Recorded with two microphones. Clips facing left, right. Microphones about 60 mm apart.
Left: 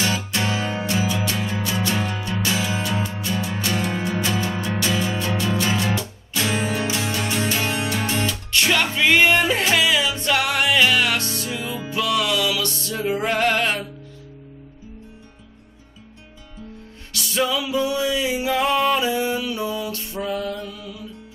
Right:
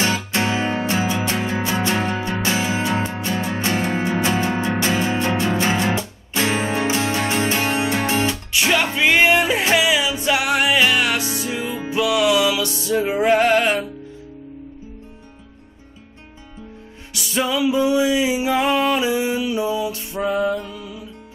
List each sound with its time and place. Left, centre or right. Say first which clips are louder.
0.0 s music: right 3 dB; right
8.5 s music: left 2 dB; centre
17.1 s music: right 1 dB; centre